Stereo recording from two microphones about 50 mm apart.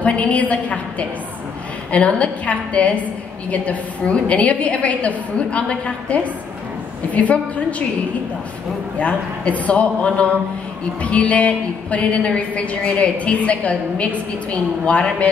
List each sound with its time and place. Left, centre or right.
0.0 s a woman's voice: left
9.0 s a woman's voice: left